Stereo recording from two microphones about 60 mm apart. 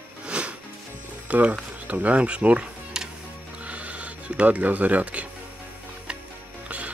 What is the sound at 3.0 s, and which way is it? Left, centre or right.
Music, centre.